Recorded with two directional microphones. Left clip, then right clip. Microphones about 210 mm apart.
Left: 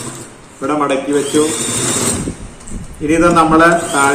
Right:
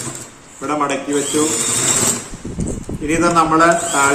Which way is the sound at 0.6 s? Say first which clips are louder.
Left 4 dB; 5° right (ahead or behind).